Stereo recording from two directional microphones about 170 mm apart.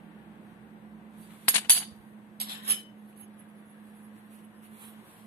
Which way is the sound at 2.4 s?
70° right (ahead or behind).